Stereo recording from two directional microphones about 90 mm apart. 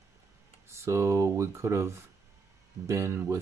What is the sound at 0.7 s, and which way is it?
Speech, 30° right (ahead or behind).